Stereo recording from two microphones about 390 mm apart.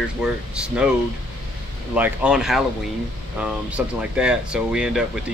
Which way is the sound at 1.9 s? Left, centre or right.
Centre.